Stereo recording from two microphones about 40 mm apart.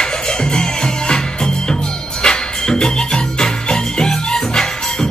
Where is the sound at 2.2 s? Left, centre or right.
Centre.